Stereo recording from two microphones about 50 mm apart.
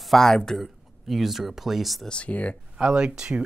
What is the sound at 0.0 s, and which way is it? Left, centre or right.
Speech, centre.